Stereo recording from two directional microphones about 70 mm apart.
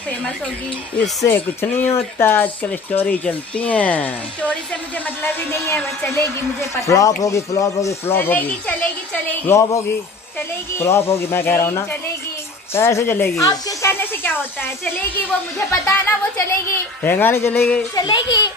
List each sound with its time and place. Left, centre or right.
1.3 s speech: left
5.2 s a woman's voice: left
8.0 s speech: left
9.5 s a man's voice: left
12.7 s a woman's voice: left
13.4 s speech: left
13.8 s a woman's voice: left
17.9 s a child's voice: left